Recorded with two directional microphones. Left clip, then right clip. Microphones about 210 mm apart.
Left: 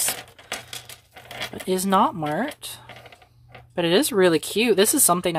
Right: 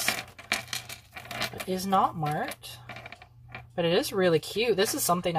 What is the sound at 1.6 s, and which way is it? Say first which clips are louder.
Speech: left 6 dB; 45° left (ahead or behind).